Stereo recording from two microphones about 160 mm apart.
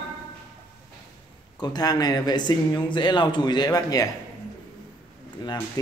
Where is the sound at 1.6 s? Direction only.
25° left (ahead or behind).